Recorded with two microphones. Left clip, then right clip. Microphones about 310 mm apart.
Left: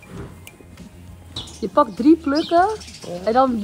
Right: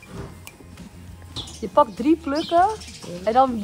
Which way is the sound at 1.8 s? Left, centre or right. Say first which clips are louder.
Left 2 dB; left.